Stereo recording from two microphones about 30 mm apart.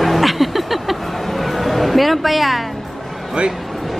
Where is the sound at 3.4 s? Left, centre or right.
Right.